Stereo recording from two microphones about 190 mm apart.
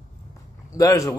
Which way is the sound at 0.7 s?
15° left (ahead or behind).